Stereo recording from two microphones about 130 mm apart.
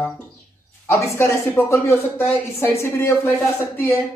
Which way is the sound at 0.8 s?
20° left (ahead or behind).